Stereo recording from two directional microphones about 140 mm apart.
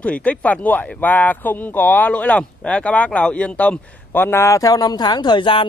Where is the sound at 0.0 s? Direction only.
10° left (ahead or behind).